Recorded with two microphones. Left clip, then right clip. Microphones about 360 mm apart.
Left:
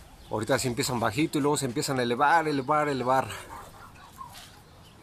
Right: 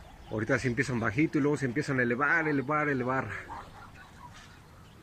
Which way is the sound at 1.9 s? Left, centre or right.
Centre.